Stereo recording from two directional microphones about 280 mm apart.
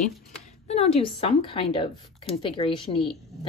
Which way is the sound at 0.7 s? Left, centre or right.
Left.